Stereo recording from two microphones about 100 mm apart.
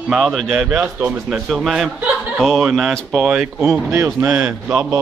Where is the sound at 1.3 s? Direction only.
Centre (ahead or behind).